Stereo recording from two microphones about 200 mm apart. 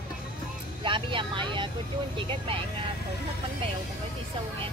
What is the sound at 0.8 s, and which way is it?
Vehicle, 25° right (ahead or behind).